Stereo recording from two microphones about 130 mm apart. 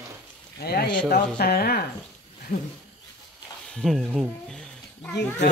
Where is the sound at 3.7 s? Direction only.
5° left (ahead or behind).